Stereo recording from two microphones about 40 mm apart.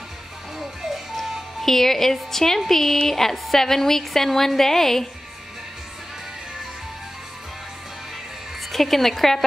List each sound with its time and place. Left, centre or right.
0.6 s music: centre
1.7 s a woman's voice: centre
8.7 s speech: centre